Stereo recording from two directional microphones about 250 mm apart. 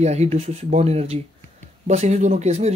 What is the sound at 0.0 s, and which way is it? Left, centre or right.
Speech, right.